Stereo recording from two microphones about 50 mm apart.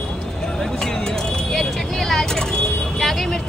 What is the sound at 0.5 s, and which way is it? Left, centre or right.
Vehicle, centre.